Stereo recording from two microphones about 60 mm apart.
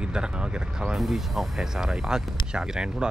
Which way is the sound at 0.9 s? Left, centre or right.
Centre.